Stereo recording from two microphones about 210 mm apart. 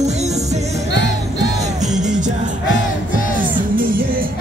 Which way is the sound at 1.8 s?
35° right (ahead or behind).